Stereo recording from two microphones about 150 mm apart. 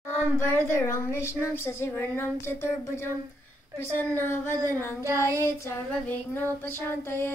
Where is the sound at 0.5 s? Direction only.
15° left (ahead or behind).